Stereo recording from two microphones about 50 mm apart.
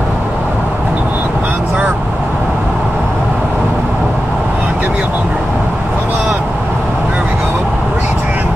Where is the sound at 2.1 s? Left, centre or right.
Centre.